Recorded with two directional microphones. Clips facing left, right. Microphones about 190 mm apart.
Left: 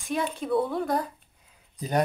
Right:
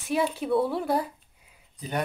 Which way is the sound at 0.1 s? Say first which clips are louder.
Right 2 dB; 5° right (ahead or behind).